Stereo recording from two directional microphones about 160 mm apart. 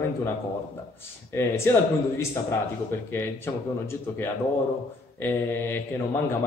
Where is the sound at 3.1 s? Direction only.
15° left (ahead or behind).